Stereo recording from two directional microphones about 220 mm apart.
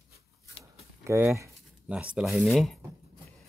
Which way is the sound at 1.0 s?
10° right (ahead or behind).